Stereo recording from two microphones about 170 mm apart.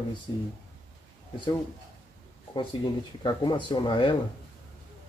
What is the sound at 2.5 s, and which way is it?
Speech, 25° left (ahead or behind).